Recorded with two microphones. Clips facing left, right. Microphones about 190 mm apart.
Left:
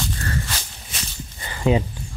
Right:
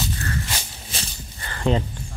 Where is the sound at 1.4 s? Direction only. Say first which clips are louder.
Left 2 dB; 10° left (ahead or behind).